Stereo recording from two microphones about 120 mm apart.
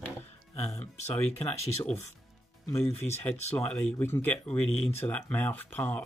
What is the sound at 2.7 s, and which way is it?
Speech, 20° left (ahead or behind).